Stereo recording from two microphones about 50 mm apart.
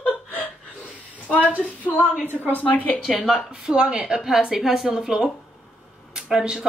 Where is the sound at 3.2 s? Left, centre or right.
Centre.